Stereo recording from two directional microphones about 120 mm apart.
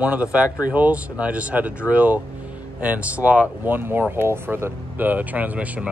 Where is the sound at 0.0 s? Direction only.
10° right (ahead or behind).